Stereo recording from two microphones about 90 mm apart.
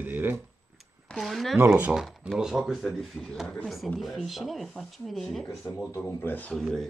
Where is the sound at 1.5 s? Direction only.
20° right (ahead or behind).